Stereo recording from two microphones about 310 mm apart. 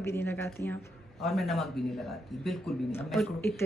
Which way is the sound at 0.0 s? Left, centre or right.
Centre.